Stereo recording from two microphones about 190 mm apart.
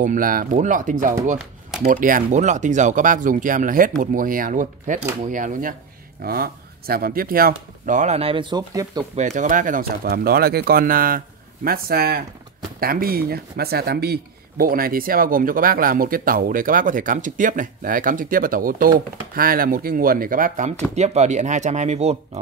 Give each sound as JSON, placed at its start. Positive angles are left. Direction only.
{"t": 0.0, "sound": "speech", "side_deg": -45}
{"t": 9.1, "sound": "speech", "side_deg": -40}